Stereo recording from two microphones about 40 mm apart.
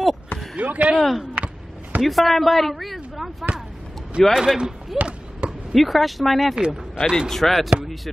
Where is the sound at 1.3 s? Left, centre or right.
Right.